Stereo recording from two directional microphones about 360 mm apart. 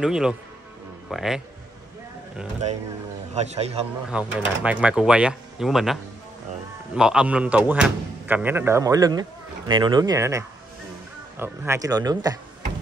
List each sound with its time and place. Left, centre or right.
0.0 s speech: centre
3.3 s speech: centre
4.3 s speech: centre
7.0 s speech: centre